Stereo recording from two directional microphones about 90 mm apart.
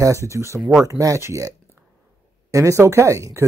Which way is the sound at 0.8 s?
35° right (ahead or behind).